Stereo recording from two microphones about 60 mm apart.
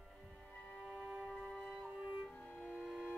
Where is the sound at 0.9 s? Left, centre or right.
Right.